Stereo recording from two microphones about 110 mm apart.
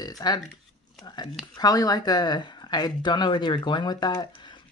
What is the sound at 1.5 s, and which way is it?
Speech, 35° left (ahead or behind).